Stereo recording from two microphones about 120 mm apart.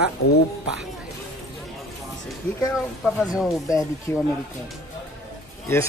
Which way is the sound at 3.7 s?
25° left (ahead or behind).